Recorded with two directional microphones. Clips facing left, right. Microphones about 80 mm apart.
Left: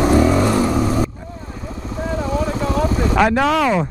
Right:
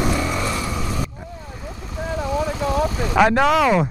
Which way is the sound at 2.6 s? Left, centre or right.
Left.